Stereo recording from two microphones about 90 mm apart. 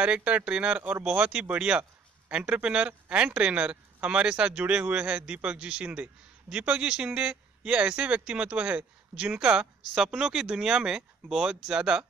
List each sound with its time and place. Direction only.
0.0 s a man's voice: 15° right (ahead or behind)